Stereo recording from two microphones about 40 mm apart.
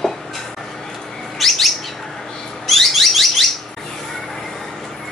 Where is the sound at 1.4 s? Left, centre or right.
Centre.